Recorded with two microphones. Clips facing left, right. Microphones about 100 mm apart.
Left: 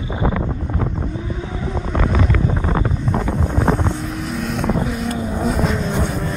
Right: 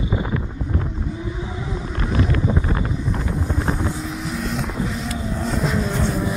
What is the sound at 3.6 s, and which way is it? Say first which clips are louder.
Vehicle: left 7 dB; 55° left (ahead or behind).